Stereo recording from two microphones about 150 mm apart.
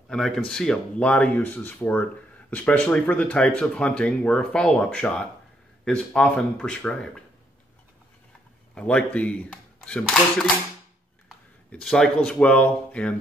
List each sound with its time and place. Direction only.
0.1 s speech: 5° left (ahead or behind)
8.7 s speech: 5° left (ahead or behind)
11.7 s speech: 5° left (ahead or behind)